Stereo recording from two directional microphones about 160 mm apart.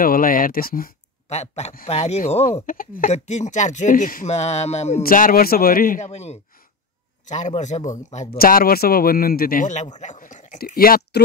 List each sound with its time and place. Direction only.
0.0 s speech: 65° left (ahead or behind)
1.3 s speech: 45° left (ahead or behind)
2.6 s speech: 60° left (ahead or behind)
3.1 s speech: 45° left (ahead or behind)
5.0 s a man's voice: 60° left (ahead or behind)
5.9 s speech: 45° left (ahead or behind)
8.4 s a man's voice: 65° left (ahead or behind)
10.6 s a man's voice: 65° left (ahead or behind)